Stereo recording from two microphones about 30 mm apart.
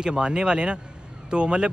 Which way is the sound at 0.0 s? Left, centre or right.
Right.